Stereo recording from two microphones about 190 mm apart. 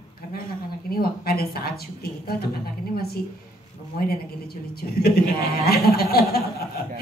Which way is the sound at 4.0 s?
55° left (ahead or behind).